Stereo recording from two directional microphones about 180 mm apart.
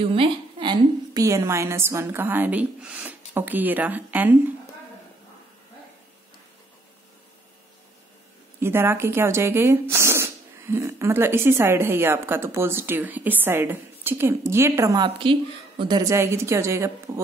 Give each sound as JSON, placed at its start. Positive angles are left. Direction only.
{"t": 0.0, "sound": "a woman's voice", "side_deg": -30}
{"t": 8.5, "sound": "speech", "side_deg": -15}